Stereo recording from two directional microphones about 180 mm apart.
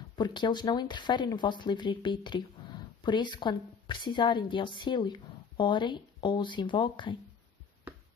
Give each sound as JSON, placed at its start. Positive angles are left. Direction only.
{"t": 0.2, "sound": "speech", "side_deg": 25}